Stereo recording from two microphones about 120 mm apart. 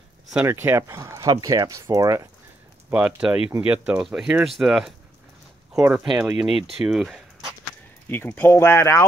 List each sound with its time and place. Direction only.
0.5 s speech: 20° right (ahead or behind)
2.9 s speech: 10° right (ahead or behind)
8.1 s speech: 15° left (ahead or behind)